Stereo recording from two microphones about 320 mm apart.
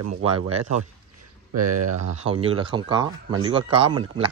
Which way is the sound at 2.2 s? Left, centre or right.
Centre.